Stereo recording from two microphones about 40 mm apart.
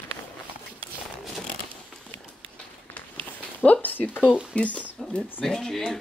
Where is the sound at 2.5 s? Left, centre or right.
Left.